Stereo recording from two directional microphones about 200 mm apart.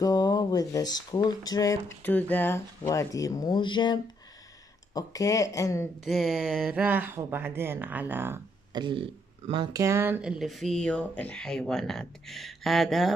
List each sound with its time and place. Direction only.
0.0 s speech: 20° left (ahead or behind)
6.0 s speech: centre (ahead or behind)
8.8 s speech: 25° right (ahead or behind); by 13.1 s centre (ahead or behind)